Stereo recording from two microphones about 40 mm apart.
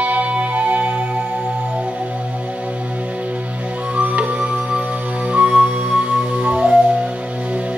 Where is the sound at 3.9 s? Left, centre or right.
Right.